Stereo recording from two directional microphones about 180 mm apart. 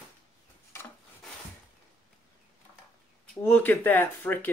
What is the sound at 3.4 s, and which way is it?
Speech, 10° left (ahead or behind).